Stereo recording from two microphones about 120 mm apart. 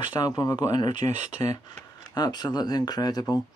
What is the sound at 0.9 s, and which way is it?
Speech, 80° right.